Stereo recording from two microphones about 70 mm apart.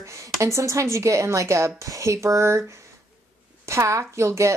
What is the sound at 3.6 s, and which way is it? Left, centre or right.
Speech, right.